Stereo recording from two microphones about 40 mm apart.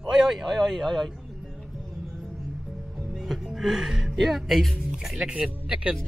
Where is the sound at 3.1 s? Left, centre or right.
Centre.